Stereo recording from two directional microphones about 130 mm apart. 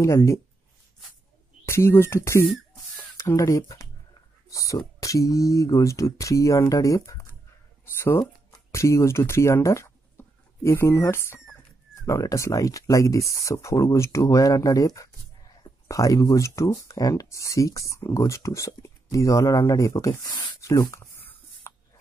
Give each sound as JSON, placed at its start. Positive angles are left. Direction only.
{"t": 0.0, "sound": "speech", "side_deg": 20}
{"t": 1.7, "sound": "speech", "side_deg": 20}